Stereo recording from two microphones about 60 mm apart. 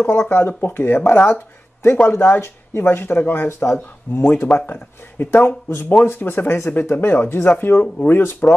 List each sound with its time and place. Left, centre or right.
0.3 s speech: left
3.7 s speech: left